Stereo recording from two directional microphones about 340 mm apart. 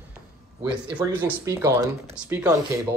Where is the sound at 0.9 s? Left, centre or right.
Centre.